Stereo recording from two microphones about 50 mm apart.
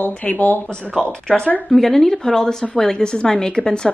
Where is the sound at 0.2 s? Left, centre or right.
Left.